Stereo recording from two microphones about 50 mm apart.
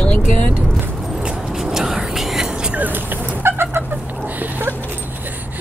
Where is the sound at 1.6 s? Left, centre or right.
Centre.